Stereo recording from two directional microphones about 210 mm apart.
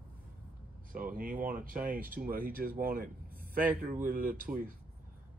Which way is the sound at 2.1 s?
45° right (ahead or behind).